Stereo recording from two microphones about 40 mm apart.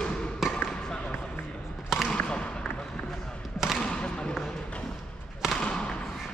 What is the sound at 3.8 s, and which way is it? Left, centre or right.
Basketball bounce, left.